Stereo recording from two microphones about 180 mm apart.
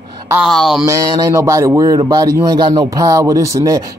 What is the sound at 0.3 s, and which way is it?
Speech, 5° right (ahead or behind).